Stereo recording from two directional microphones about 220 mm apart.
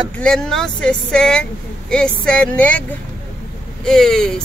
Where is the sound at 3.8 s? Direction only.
Centre (ahead or behind).